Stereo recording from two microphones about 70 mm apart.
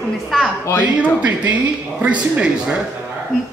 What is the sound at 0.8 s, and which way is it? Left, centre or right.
Speech, centre.